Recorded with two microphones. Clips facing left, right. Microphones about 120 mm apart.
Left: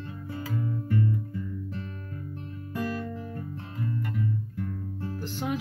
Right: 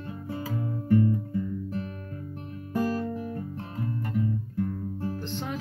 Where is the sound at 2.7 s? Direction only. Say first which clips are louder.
Right 4 dB; 35° right (ahead or behind).